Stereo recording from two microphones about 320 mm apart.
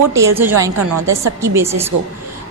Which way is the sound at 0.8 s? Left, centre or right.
Right.